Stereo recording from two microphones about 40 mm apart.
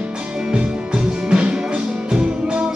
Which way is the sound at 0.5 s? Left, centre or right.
Right.